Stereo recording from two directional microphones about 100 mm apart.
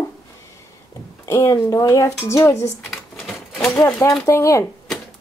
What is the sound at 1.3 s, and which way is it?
Speech, 30° left (ahead or behind).